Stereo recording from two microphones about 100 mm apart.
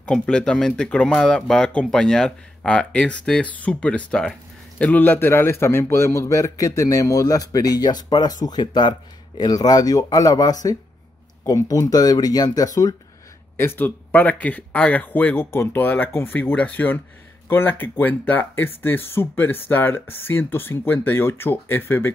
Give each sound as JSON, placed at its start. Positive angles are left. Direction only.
{"t": 0.0, "sound": "a man's voice", "side_deg": 10}
{"t": 13.6, "sound": "speech", "side_deg": 20}